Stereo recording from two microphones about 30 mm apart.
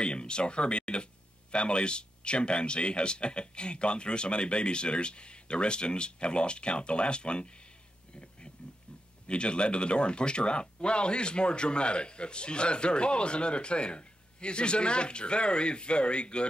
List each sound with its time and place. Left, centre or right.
0.0 s speech: left
9.3 s speech: left